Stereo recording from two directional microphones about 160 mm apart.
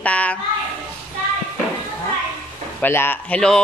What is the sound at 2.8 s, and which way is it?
Speech, 15° left (ahead or behind).